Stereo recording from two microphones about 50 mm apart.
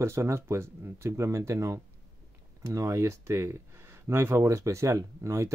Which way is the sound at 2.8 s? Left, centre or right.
Right.